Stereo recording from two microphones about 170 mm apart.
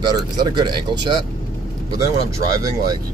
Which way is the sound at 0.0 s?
25° right (ahead or behind).